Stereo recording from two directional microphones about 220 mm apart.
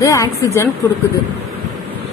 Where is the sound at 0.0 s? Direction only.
15° left (ahead or behind).